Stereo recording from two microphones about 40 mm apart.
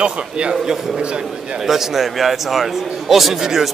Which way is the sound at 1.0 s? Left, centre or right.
Right.